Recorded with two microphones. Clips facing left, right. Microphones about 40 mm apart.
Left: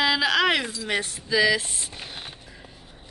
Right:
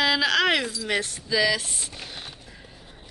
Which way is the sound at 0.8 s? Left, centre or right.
Centre.